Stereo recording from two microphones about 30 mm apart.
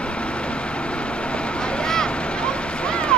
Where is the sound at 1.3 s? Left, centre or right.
Left.